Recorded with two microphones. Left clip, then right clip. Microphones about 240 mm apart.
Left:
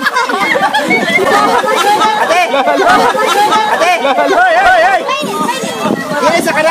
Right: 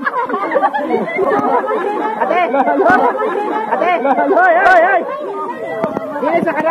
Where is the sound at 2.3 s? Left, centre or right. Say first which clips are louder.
Left 3 dB; left.